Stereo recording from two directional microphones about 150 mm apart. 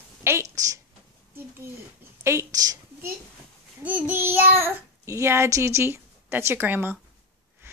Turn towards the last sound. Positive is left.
turn(degrees=-15)  # may be behind; listen again after turning